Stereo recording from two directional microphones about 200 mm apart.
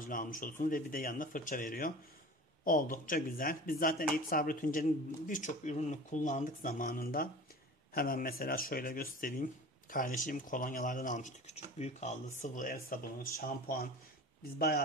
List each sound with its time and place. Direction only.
0.0 s speech: 45° left (ahead or behind)